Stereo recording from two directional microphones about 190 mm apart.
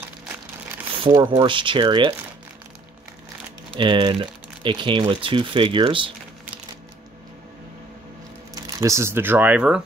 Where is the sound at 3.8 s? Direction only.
25° right (ahead or behind).